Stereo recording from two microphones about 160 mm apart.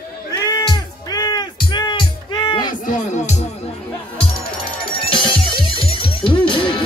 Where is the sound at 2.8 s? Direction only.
50° left (ahead or behind).